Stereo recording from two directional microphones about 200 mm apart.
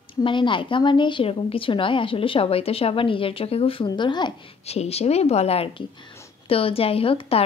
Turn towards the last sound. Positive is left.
turn(degrees=30)  # may be behind; listen again after turning